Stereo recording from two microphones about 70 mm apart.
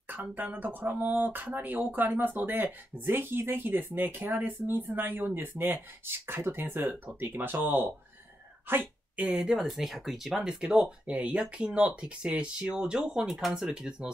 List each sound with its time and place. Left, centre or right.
0.1 s speech: right
8.6 s a sound: right
9.2 s speech: centre
13.3 s speech: centre
13.7 s speech: centre